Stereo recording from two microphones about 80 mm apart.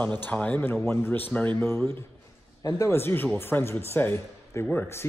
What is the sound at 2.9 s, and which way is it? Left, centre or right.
Speech, left.